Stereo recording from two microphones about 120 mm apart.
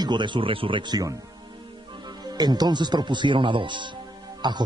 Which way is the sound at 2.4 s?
35° right (ahead or behind).